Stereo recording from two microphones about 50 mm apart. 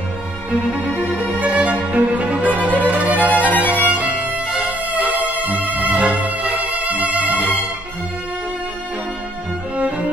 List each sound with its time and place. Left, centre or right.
0.5 s music: right
3.3 s music: left
3.7 s violin: right
4.5 s music: right
9.8 s music: right